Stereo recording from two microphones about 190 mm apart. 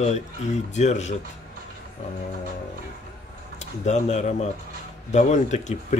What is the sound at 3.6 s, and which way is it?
Speech, 35° left (ahead or behind).